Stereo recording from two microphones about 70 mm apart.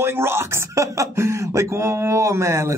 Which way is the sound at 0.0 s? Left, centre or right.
Right.